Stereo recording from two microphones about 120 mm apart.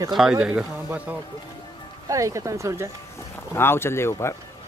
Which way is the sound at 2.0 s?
25° right (ahead or behind).